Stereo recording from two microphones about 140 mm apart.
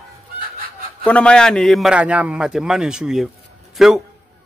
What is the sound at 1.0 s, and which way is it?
A man's voice, 10° left (ahead or behind).